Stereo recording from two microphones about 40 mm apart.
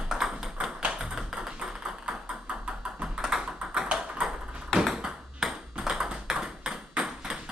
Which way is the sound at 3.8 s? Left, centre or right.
Right.